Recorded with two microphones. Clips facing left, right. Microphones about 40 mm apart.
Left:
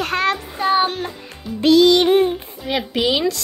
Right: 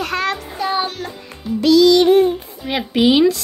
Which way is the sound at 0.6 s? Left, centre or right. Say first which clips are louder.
Left 4 dB; left.